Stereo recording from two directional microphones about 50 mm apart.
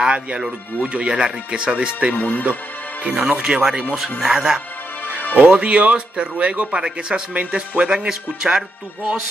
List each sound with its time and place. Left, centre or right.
0.0 s speech: right
2.1 s speech: left
3.0 s speech: right
4.2 s speech: centre
5.4 s speech: right